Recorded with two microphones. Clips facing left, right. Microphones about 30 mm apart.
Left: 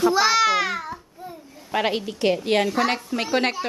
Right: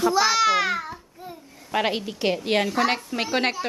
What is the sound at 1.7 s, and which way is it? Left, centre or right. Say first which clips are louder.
A woman's voice: left 1 dB; centre.